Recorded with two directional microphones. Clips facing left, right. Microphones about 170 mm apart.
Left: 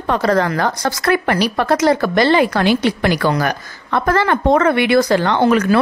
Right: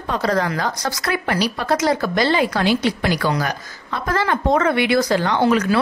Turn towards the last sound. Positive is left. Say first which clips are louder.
# left 3 dB
turn(degrees=55)  # may be behind; listen again after turning